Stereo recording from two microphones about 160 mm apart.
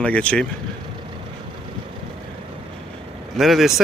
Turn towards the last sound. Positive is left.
turn(degrees=0)  # may be behind; listen again after turning